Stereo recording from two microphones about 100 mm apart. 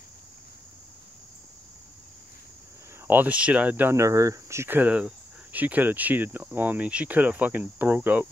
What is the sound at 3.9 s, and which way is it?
Speech, 30° right (ahead or behind).